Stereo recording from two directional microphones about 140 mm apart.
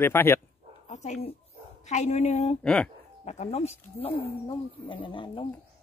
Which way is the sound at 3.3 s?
55° left (ahead or behind).